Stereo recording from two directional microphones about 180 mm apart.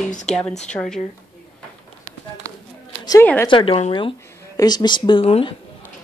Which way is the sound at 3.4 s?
30° left (ahead or behind).